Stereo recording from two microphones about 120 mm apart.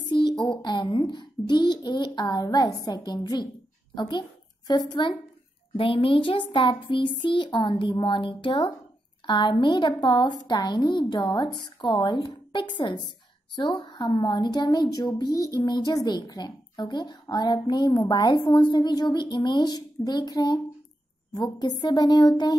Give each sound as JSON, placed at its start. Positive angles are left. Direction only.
{"t": 0.1, "sound": "a sound", "side_deg": 40}
{"t": 0.5, "sound": "a child's voice", "side_deg": 40}
{"t": 5.8, "sound": "a child's voice", "side_deg": 50}